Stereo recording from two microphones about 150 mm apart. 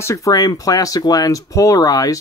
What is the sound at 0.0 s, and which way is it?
Speech, 20° left (ahead or behind).